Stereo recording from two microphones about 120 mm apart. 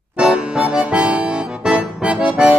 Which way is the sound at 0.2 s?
10° right (ahead or behind).